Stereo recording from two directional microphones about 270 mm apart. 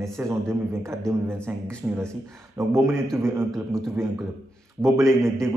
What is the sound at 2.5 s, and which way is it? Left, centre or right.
Speech, centre.